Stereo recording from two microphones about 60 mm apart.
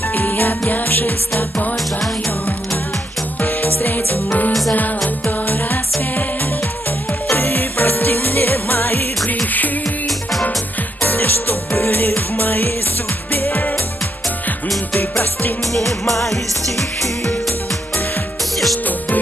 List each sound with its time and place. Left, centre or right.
0.1 s music: left
3.3 s music: left
7.3 s music: left
11.0 s music: left
15.0 s music: left
15.7 s music: centre